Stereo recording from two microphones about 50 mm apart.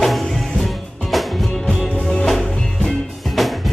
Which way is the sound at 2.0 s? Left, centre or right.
Centre.